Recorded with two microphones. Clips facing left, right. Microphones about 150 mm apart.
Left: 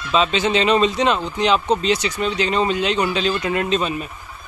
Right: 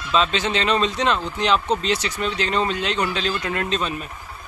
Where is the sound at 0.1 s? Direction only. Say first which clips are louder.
Left 3 dB; 5° left (ahead or behind).